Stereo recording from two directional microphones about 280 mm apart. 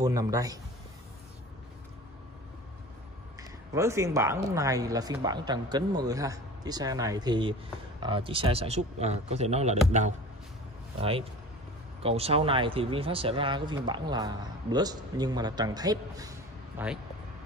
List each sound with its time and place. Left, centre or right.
0.0 s speech: centre
3.3 s speech: centre